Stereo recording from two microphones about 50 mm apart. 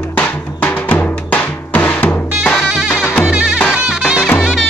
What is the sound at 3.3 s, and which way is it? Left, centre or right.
Music, right.